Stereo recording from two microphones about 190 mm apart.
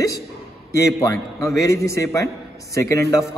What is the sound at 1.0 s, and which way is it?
A man's voice, 15° left (ahead or behind).